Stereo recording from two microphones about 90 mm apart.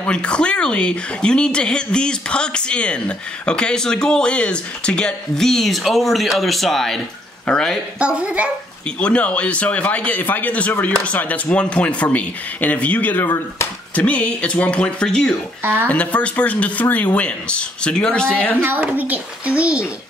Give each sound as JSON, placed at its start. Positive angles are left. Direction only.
{"t": 0.0, "sound": "speech", "side_deg": 10}
{"t": 8.0, "sound": "a child's voice", "side_deg": -10}
{"t": 9.0, "sound": "speech", "side_deg": 10}
{"t": 15.6, "sound": "speech", "side_deg": -25}
{"t": 15.9, "sound": "speech", "side_deg": 15}
{"t": 18.6, "sound": "a child's voice", "side_deg": -20}